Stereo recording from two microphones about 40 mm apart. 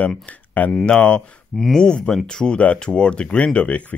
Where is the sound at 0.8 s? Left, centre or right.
Left.